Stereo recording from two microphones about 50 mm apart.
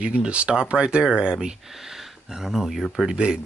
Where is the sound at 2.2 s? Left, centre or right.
Centre.